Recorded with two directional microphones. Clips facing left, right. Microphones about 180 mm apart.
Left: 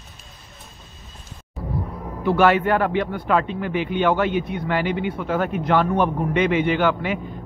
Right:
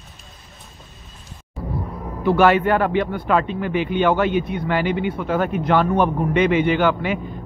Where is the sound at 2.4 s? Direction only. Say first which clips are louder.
Right 1 dB; 20° right (ahead or behind).